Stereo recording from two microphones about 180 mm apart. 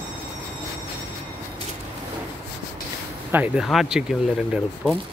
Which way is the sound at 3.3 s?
5° right (ahead or behind).